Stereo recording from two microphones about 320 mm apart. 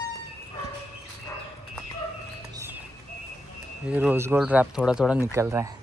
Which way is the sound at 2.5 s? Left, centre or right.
Centre.